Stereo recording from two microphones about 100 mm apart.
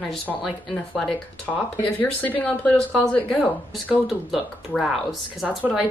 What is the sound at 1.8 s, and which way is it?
Speech, 15° left (ahead or behind).